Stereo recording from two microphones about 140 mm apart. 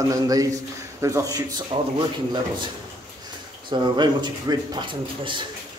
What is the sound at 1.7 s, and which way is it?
Speech, 35° right (ahead or behind).